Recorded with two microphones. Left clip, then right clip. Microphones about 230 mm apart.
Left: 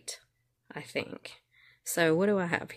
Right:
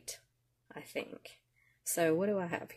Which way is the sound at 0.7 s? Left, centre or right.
Left.